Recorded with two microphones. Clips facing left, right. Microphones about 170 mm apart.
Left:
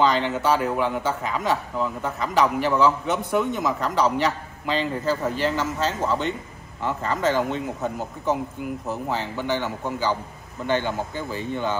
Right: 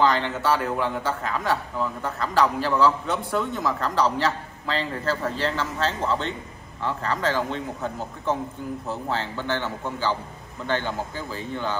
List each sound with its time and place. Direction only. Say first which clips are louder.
0.0 s a man's voice: left 1 dB; 20° left (ahead or behind)
6.8 s a man's voice: left 2 dB; 20° left (ahead or behind)